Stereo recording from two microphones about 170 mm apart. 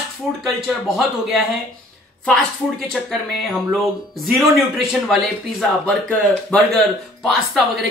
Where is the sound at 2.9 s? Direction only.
Centre (ahead or behind).